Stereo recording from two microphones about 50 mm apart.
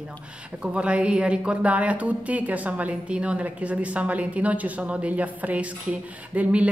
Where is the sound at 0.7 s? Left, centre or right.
Right.